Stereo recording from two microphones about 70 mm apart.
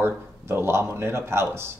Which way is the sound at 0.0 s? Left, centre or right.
Right.